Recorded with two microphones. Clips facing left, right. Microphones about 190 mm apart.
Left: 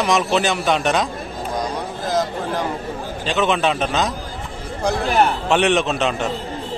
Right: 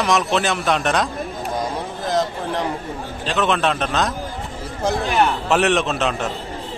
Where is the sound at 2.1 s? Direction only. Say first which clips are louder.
Even; centre (ahead or behind).